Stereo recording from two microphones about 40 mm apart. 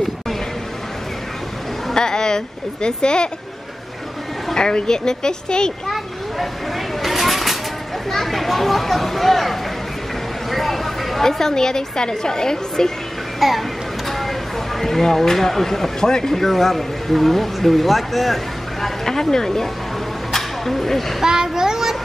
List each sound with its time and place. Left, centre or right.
2.0 s speech: centre
4.6 s speech: centre
7.0 s a sound: centre
8.1 s a woman's voice: centre
13.4 s speech: centre
14.8 s speech: centre
19.0 s speech: centre
20.3 s a sound: centre
21.2 s a child's voice: centre